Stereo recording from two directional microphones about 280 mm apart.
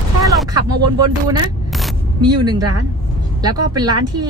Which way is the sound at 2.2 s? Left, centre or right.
Centre.